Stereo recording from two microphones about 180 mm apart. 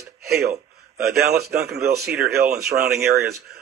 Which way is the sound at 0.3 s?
60° right (ahead or behind).